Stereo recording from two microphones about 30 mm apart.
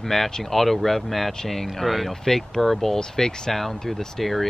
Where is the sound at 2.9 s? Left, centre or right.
Left.